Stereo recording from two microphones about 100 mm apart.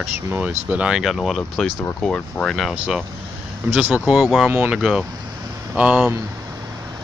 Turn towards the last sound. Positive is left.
turn(degrees=-10)  # may be behind; listen again after turning